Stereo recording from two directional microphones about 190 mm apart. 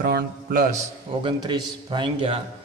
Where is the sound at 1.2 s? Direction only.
25° right (ahead or behind).